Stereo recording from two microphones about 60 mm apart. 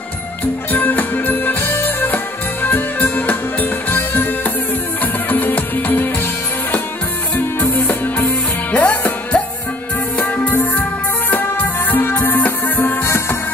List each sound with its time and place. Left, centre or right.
0.7 s music: left
7.3 s music: left
8.7 s music: left
13.0 s music: left